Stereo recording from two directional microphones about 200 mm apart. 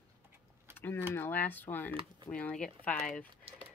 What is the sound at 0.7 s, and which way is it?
Keys jangling, 10° left (ahead or behind).